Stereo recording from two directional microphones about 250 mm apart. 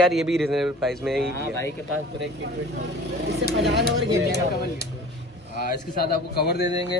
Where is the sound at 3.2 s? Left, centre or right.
Right.